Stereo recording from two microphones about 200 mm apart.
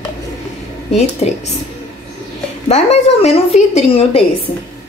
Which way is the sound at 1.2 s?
30° left (ahead or behind).